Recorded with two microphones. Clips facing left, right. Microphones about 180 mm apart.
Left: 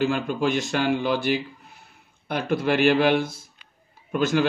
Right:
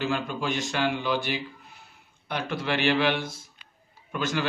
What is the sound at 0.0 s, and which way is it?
A man's voice, 50° left (ahead or behind).